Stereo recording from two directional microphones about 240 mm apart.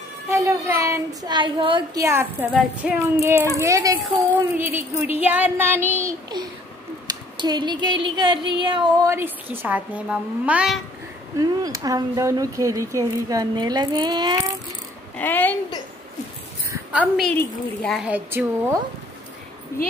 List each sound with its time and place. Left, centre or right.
0.3 s speech: centre
2.0 s speech: centre
11.3 s speech: centre
15.1 s a child's voice: centre
16.7 s a woman's voice: centre
19.7 s a child's voice: centre